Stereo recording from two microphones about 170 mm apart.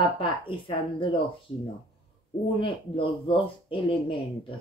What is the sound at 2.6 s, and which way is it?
Speech, 30° left (ahead or behind).